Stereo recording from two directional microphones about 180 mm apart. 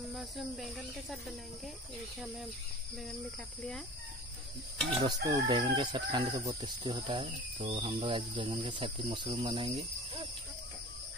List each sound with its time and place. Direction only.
0.1 s speech: centre (ahead or behind)
5.0 s chicken: 25° right (ahead or behind)